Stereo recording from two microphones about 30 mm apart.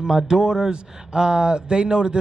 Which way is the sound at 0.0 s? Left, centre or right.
Right.